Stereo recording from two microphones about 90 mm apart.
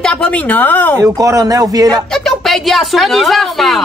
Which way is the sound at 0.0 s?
15° left (ahead or behind).